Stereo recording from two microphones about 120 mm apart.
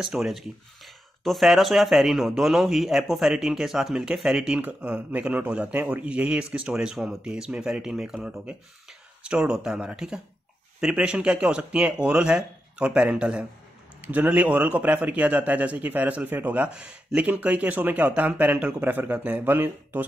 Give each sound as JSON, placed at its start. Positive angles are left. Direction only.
{"t": 0.0, "sound": "a man's voice", "side_deg": -5}